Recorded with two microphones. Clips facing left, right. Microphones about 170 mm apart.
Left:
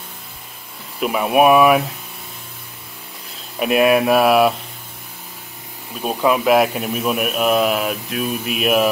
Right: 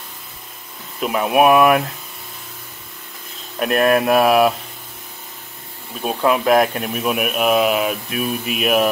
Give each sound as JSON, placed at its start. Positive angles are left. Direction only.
{"t": 0.9, "sound": "speech", "side_deg": 0}
{"t": 3.5, "sound": "speech", "side_deg": 5}
{"t": 5.9, "sound": "speech", "side_deg": 0}